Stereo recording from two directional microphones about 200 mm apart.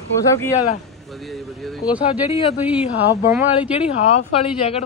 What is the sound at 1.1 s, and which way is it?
Speech, centre (ahead or behind).